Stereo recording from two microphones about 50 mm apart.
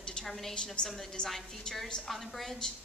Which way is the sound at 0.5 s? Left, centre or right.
Centre.